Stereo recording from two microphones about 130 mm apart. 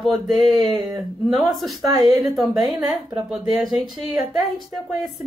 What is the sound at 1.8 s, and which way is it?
Speech, 30° right (ahead or behind).